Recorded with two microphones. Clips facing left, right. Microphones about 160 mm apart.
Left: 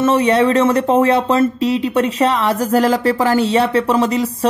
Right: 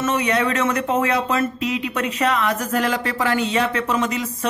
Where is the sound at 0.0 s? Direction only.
30° left (ahead or behind).